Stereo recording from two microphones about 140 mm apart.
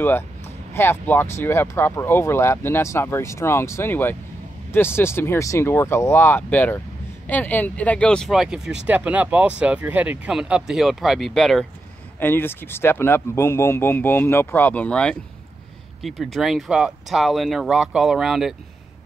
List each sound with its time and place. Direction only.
0.7 s speech: 15° left (ahead or behind)
12.2 s speech: 15° left (ahead or behind); by 18.5 s 5° right (ahead or behind)